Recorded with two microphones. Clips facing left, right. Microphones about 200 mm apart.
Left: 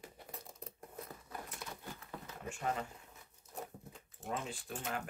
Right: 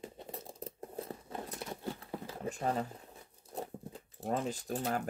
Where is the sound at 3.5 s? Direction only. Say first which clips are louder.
Right 6 dB; 35° right (ahead or behind).